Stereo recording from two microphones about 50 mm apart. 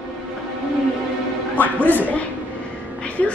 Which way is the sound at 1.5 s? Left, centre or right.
Left.